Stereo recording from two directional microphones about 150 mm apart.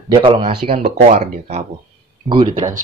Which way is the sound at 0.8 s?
55° right (ahead or behind).